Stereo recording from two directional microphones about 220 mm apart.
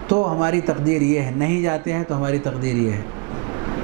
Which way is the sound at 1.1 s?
15° right (ahead or behind).